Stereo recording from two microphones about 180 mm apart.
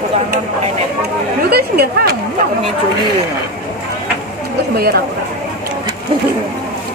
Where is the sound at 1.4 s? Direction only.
60° right (ahead or behind).